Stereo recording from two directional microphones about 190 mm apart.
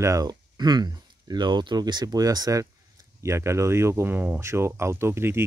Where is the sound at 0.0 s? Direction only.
20° right (ahead or behind).